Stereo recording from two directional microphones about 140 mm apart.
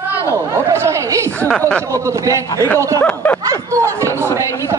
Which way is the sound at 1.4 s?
10° left (ahead or behind).